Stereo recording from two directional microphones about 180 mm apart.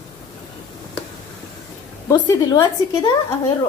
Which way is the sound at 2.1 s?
20° left (ahead or behind).